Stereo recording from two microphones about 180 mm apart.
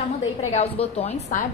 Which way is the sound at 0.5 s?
35° left (ahead or behind).